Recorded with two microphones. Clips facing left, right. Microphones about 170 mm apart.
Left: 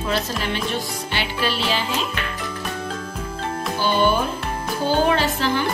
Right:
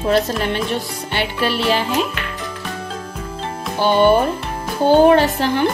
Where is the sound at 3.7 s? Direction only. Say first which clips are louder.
Right 7 dB; 65° right (ahead or behind).